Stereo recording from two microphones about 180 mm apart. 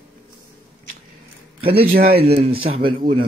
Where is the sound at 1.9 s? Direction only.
55° right (ahead or behind).